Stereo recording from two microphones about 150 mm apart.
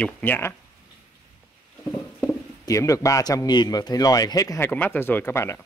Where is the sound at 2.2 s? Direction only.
20° left (ahead or behind).